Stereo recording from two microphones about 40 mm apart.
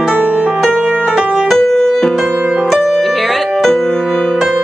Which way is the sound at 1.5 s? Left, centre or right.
Centre.